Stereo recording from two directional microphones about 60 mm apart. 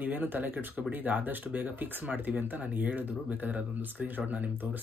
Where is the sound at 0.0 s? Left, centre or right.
Right.